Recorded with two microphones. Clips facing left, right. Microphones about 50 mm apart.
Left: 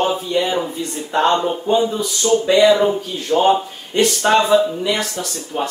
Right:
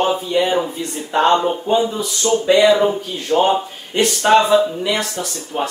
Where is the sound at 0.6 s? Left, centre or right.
Centre.